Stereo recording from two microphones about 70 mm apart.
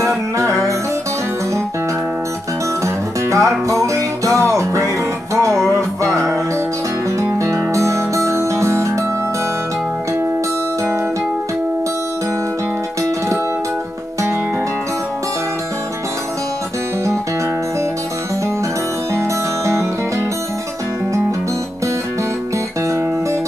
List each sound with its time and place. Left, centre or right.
2.8 s music: right
19.1 s music: right